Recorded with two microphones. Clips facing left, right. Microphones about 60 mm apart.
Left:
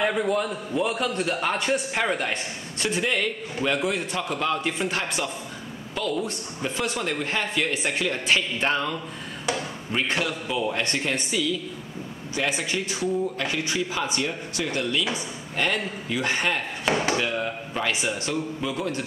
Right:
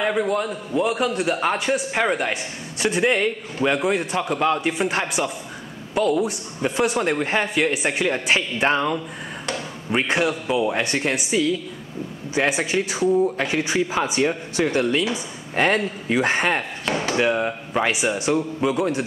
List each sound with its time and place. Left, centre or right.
0.0 s a man's voice: centre
3.0 s a man's voice: right
10.8 s a man's voice: centre
12.4 s speech: right
14.2 s a man's voice: right
16.9 s speech: centre
17.2 s speech: right
18.0 s a man's voice: centre
18.3 s speech: right